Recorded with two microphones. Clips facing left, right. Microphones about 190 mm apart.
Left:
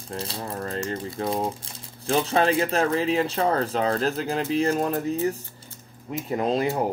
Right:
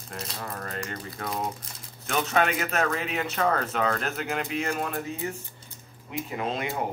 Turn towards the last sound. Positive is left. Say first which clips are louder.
# left 6 dB
turn(degrees=35)  # may be behind; listen again after turning